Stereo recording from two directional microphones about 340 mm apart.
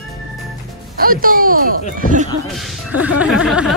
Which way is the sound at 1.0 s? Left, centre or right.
Right.